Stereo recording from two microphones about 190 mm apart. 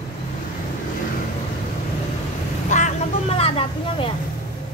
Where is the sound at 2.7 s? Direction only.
40° left (ahead or behind).